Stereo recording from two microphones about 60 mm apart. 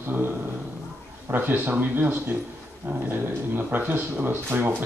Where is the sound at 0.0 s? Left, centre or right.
Right.